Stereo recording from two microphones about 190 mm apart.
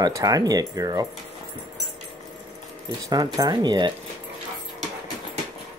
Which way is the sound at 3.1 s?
20° right (ahead or behind).